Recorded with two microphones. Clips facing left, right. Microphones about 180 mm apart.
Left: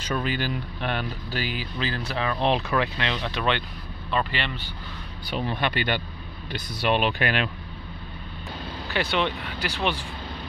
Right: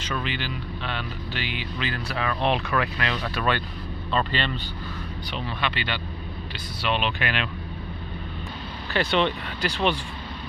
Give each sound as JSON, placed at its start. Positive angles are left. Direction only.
{"t": 0.1, "sound": "a man's voice", "side_deg": 40}
{"t": 5.5, "sound": "speech", "side_deg": 45}
{"t": 9.0, "sound": "a man's voice", "side_deg": 10}
{"t": 9.7, "sound": "speech", "side_deg": -15}